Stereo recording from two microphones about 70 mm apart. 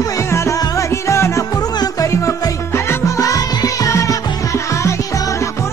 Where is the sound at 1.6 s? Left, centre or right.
Left.